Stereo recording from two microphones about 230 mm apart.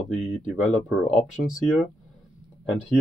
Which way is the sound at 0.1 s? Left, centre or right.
Left.